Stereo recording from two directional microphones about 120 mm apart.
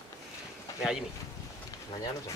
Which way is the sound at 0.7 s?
25° left (ahead or behind).